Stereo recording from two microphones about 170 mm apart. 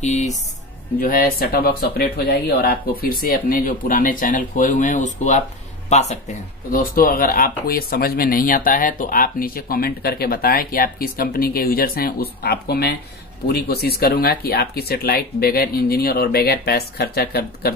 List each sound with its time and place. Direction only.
0.0 s speech: 40° left (ahead or behind)
0.9 s speech: 55° left (ahead or behind)